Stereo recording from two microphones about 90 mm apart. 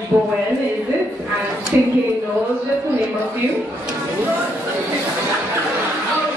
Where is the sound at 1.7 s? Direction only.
25° right (ahead or behind).